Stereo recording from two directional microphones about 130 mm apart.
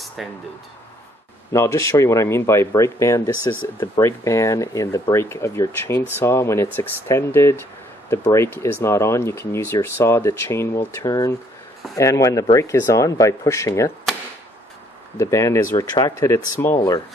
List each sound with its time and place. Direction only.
0.2 s speech: centre (ahead or behind)
1.5 s speech: 20° left (ahead or behind)
15.1 s speech: 25° left (ahead or behind)